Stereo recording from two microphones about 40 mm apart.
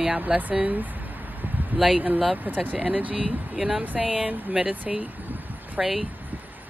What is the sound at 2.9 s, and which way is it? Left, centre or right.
Speech, right.